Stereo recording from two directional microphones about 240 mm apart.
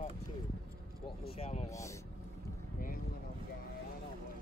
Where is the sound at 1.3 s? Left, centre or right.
Left.